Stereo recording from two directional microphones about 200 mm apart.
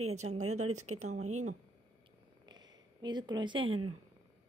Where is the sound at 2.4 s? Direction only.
20° right (ahead or behind).